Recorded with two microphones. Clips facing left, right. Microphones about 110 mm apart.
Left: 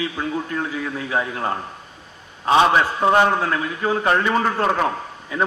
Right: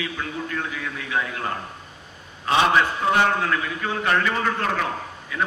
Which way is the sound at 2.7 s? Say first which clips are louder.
Left 3 dB; 30° left (ahead or behind).